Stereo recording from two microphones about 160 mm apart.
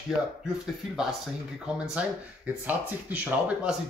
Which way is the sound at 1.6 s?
5° right (ahead or behind).